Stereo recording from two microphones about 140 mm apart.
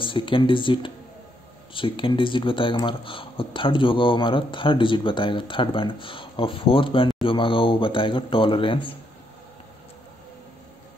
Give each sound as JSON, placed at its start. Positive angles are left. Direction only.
{"t": 0.0, "sound": "speech", "side_deg": 35}